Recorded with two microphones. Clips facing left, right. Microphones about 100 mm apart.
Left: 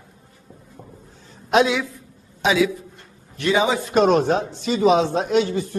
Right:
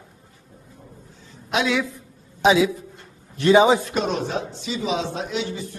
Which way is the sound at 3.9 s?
55° left (ahead or behind).